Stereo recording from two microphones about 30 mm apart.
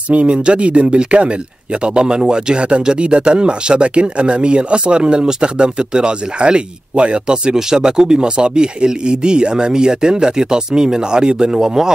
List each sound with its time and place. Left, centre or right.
0.1 s speech: right
7.5 s speech: right